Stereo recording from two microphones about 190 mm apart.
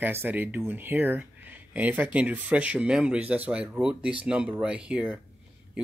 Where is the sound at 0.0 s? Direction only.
10° right (ahead or behind).